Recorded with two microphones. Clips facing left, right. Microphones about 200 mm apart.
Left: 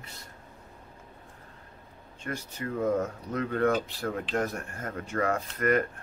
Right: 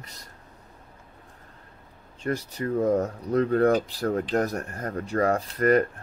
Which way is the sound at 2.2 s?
35° right (ahead or behind).